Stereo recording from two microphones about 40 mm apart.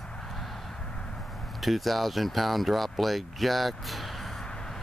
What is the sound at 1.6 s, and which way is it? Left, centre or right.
Speech, centre.